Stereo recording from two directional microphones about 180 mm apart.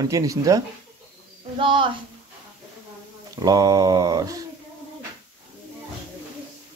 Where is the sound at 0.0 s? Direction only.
20° right (ahead or behind).